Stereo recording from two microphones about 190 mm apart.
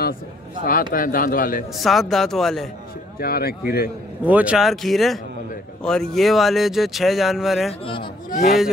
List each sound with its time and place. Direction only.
0.9 s speech: 45° left (ahead or behind)
1.8 s speech: centre (ahead or behind)
3.2 s speech: 55° left (ahead or behind)
4.2 s speech: 5° right (ahead or behind)
7.8 s speech: 25° left (ahead or behind)
8.3 s a man's voice: 55° left (ahead or behind)